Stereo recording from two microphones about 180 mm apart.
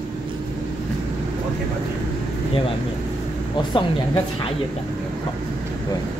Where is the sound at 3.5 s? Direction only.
25° left (ahead or behind).